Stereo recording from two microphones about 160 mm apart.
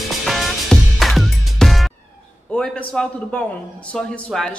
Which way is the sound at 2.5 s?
5° left (ahead or behind).